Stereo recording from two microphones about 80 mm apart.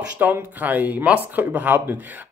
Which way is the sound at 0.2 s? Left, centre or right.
Right.